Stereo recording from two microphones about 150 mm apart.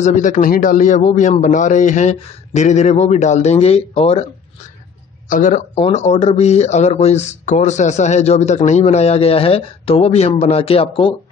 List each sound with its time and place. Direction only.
0.0 s a man's voice: 55° left (ahead or behind)
5.3 s a man's voice: 60° left (ahead or behind)
5.8 s speech: 45° left (ahead or behind)